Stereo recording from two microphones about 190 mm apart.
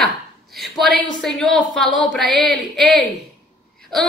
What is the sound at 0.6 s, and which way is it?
A woman's voice, centre (ahead or behind).